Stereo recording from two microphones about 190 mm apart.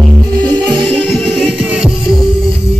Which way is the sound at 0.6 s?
20° right (ahead or behind).